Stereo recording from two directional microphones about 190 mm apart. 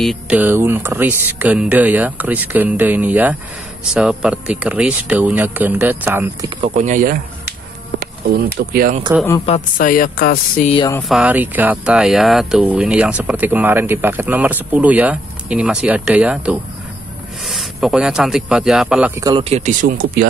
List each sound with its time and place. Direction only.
0.0 s speech: 5° right (ahead or behind)
6.6 s speech: 40° right (ahead or behind)
8.0 s speech: 55° right (ahead or behind)
9.8 s speech: 45° left (ahead or behind)
10.6 s speech: 30° left (ahead or behind)
11.0 s speech: centre (ahead or behind)
19.1 s speech: 20° right (ahead or behind)
19.5 s speech: 40° right (ahead or behind)